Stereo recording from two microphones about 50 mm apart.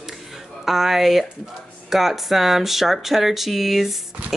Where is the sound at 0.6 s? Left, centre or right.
Centre.